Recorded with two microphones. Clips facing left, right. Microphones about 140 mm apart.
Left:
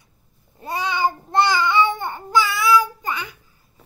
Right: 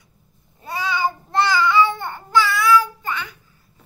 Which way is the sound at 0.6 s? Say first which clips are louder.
Left 1 dB; 20° left (ahead or behind).